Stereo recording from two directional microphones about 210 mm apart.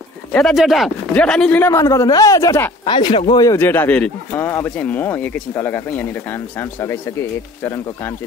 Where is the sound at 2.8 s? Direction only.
25° left (ahead or behind).